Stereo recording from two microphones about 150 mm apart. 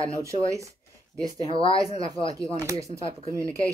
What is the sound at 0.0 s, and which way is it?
Speech, 20° right (ahead or behind).